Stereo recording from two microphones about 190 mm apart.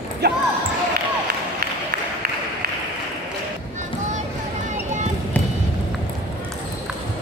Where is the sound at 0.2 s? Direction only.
60° right (ahead or behind).